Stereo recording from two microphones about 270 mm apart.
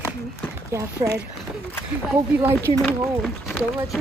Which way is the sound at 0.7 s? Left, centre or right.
Centre.